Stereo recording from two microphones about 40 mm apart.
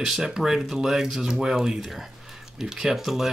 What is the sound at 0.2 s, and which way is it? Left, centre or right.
Speech, centre.